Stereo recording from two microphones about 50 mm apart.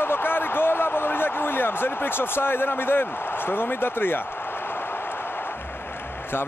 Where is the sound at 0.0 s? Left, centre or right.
Left.